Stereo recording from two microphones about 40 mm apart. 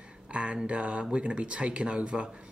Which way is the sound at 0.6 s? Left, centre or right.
Right.